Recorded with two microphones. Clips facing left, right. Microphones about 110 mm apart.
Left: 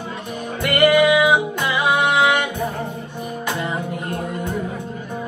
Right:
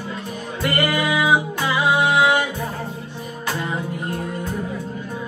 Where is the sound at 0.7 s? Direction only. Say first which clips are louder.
Left 8 dB; 20° left (ahead or behind).